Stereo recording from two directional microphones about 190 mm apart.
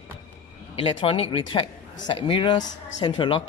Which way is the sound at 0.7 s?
30° left (ahead or behind).